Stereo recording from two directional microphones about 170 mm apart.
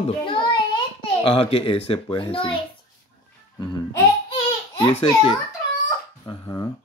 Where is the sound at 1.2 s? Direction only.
35° left (ahead or behind).